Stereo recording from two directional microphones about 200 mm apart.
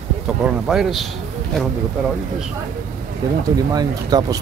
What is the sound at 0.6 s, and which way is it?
Speech, centre (ahead or behind).